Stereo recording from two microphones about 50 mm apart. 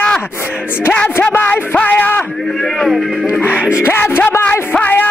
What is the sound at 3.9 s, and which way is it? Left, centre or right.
Speech, left.